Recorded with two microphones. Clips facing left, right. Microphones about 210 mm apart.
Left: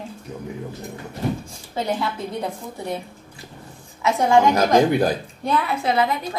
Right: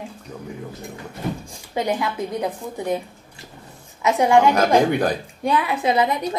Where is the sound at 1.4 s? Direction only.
15° right (ahead or behind).